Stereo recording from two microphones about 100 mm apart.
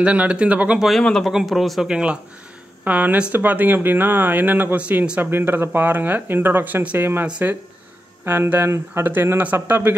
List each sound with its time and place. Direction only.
0.0 s speech: 10° right (ahead or behind)
0.8 s speech: 5° left (ahead or behind); by 9.9 s 20° right (ahead or behind)